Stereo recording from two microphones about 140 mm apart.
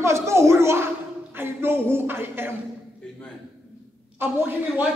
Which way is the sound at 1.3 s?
15° right (ahead or behind).